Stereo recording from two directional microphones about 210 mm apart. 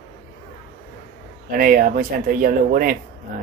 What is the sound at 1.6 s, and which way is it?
Speech, 40° right (ahead or behind).